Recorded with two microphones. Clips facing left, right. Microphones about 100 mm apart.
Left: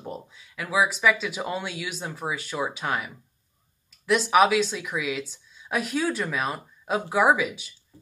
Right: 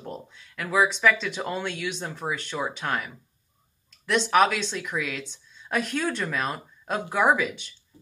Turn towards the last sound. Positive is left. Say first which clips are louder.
# left 1 dB
turn(degrees=5)  # may be behind; listen again after turning